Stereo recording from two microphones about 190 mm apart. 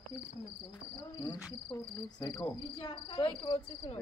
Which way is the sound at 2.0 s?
20° left (ahead or behind).